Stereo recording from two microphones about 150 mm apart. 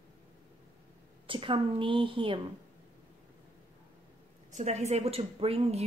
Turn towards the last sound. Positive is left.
turn(degrees=-40)  # may be behind; listen again after turning